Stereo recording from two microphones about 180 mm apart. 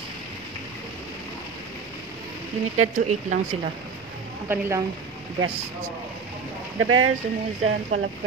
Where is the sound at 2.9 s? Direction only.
45° right (ahead or behind).